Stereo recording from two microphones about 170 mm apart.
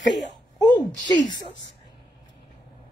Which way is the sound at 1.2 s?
90° left.